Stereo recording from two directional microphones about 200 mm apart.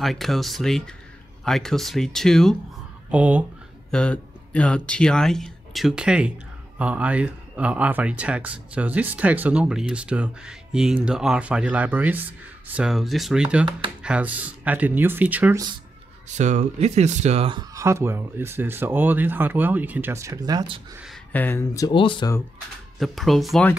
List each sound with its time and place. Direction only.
0.0 s speech: centre (ahead or behind)
3.9 s speech: 5° left (ahead or behind)
13.7 s speech: 25° right (ahead or behind)
14.0 s speech: 5° right (ahead or behind)
16.3 s speech: 35° right (ahead or behind)
21.1 s speech: 10° left (ahead or behind); by 22.3 s 25° left (ahead or behind)
22.9 s speech: centre (ahead or behind)